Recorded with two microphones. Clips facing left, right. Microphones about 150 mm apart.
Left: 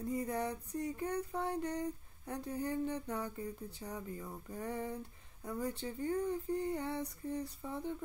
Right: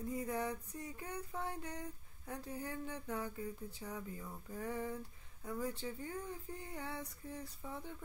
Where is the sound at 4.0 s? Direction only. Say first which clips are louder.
Left 3 dB; 20° left (ahead or behind).